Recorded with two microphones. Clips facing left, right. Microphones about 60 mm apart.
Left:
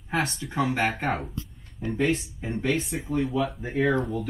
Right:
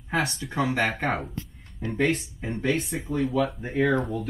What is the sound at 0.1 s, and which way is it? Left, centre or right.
Speech, centre.